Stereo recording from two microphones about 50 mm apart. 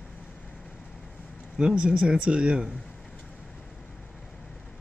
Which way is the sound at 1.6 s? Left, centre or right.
Centre.